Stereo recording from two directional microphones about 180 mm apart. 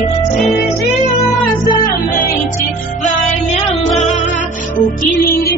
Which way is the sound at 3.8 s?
40° left (ahead or behind).